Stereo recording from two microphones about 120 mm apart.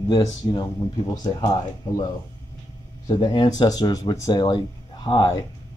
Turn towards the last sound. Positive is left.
turn(degrees=40)  # may be behind; listen again after turning